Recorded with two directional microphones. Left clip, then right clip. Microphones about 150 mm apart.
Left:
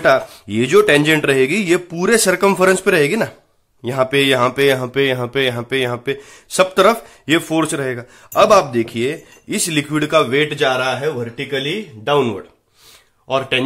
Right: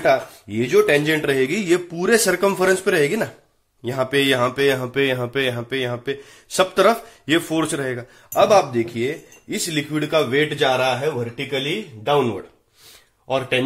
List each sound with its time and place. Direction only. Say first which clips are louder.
0.0 s speech: left 4 dB; 40° left (ahead or behind); by 8.1 s 20° left (ahead or behind)
8.3 s speech: left 4 dB; 30° left (ahead or behind)
10.1 s a man's voice: left 4 dB; 25° left (ahead or behind)